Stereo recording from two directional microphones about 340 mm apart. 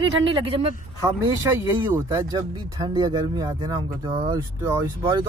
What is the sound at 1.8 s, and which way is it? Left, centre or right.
Speech, centre.